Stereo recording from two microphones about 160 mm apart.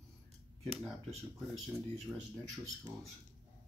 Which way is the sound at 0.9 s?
Centre (ahead or behind).